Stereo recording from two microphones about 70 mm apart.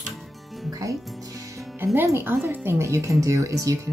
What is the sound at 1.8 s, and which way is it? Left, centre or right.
Speech, right.